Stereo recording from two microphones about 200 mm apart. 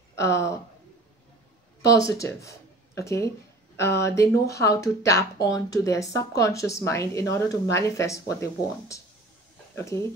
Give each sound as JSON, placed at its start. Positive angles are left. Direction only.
{"t": 0.1, "sound": "speech", "side_deg": 15}
{"t": 1.9, "sound": "speech", "side_deg": 15}